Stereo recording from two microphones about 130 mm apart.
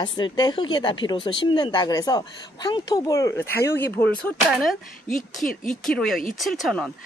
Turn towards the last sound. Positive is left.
turn(degrees=0)  # may be behind; listen again after turning